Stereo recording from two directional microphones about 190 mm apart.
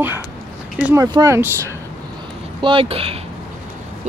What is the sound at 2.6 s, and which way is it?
Speech, 30° right (ahead or behind).